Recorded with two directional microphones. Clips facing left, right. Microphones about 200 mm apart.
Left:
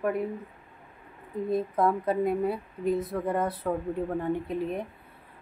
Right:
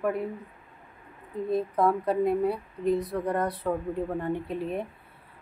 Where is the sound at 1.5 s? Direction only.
Centre (ahead or behind).